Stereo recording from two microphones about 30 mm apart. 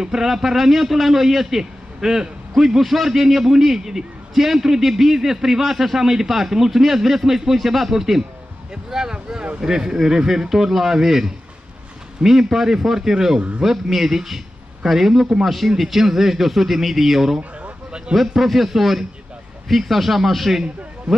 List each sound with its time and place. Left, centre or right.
0.0 s a man's voice: centre
17.4 s a sound: right
18.1 s a man's voice: centre